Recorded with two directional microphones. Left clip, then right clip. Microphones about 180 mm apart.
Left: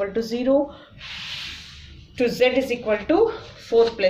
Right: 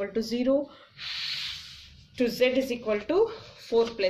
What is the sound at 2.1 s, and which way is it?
Speech, 25° right (ahead or behind).